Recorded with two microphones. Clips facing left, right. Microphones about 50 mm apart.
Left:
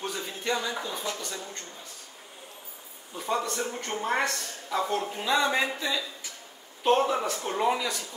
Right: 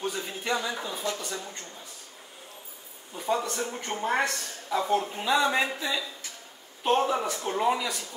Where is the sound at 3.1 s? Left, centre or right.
Centre.